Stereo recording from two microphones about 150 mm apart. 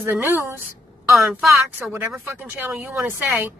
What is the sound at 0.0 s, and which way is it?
Speech, 15° right (ahead or behind).